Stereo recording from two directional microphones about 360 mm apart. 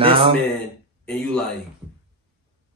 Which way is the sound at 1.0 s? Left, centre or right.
Centre.